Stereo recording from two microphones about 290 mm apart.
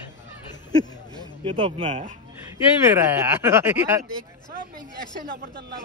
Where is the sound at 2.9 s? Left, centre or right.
Centre.